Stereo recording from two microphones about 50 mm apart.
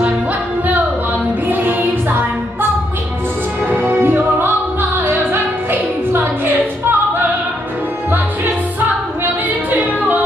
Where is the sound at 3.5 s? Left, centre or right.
Right.